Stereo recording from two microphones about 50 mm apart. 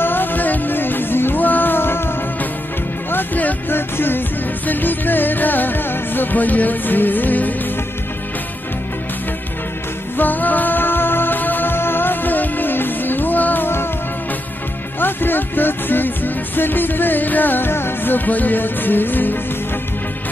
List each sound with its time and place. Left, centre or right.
0.0 s music: left
3.1 s music: left
10.1 s music: left
15.0 s music: left